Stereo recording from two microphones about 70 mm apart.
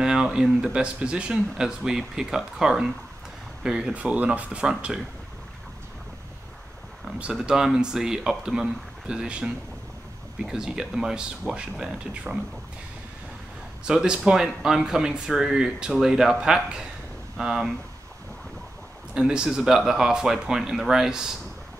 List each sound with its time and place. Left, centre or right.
0.0 s speech: centre
7.2 s speech: centre
13.8 s speech: centre
19.1 s speech: centre